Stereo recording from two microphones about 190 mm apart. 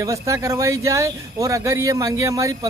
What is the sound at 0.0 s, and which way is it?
Speech, 15° right (ahead or behind).